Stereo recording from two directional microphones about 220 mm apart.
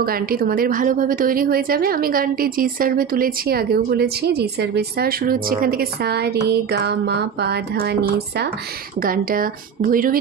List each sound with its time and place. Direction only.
0.0 s a woman's voice: 40° right (ahead or behind)